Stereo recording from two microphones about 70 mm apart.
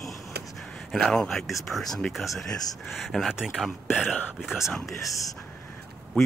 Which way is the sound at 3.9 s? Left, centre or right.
Left.